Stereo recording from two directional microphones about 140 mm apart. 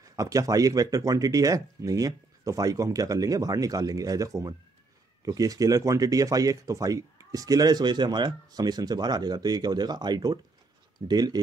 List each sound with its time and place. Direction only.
0.0 s speech: 25° right (ahead or behind)